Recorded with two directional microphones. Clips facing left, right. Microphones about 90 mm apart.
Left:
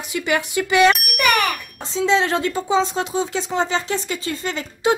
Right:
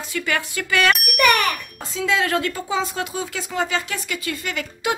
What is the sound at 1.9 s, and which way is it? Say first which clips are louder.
Speech: left 3 dB; 25° left (ahead or behind).